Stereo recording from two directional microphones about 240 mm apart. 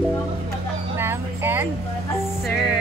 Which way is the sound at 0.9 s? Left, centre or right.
Centre.